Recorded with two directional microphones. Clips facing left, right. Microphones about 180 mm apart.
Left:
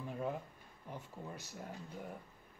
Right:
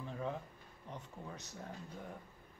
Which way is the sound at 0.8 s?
10° left (ahead or behind).